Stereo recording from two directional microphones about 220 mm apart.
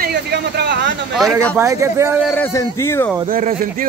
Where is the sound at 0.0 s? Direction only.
45° right (ahead or behind).